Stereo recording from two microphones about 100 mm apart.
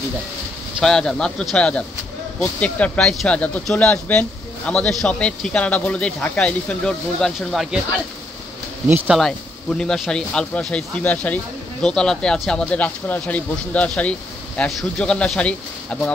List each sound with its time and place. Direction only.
0.7 s speech: 5° left (ahead or behind)
8.8 s speech: 15° right (ahead or behind)
9.1 s speech: 5° left (ahead or behind)